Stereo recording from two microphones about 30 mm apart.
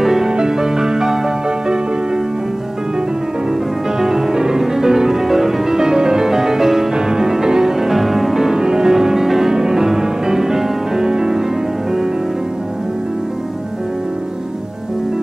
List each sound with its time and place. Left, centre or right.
0.0 s music: centre
4.0 s music: centre